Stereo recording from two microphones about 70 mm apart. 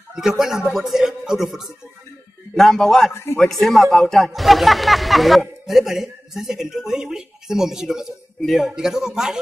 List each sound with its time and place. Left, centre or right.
0.1 s a woman's voice: centre
3.1 s a man's voice: left
3.3 s a woman's voice: centre